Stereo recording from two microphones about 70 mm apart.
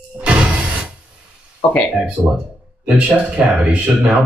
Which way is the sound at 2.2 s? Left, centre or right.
Right.